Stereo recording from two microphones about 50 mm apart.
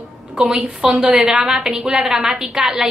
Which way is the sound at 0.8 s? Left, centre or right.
Centre.